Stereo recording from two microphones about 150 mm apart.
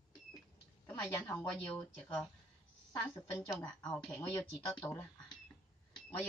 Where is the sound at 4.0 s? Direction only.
5° left (ahead or behind).